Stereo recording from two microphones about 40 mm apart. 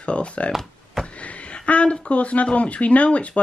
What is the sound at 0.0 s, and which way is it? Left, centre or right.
Speech, left.